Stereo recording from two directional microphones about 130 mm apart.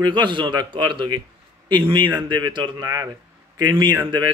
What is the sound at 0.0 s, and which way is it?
Speech, 35° right (ahead or behind).